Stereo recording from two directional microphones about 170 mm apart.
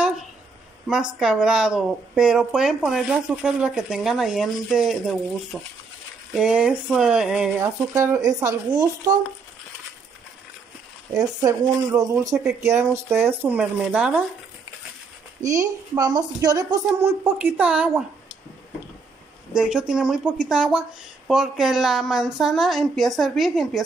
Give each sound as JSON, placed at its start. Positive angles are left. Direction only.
{"t": 0.8, "sound": "speech", "side_deg": -5}
{"t": 11.1, "sound": "speech", "side_deg": -20}
{"t": 15.4, "sound": "a woman's voice", "side_deg": -20}
{"t": 19.5, "sound": "speech", "side_deg": -5}